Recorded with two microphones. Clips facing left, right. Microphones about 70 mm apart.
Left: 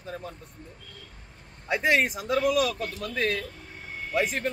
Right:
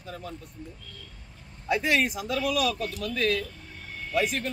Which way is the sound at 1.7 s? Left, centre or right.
Left.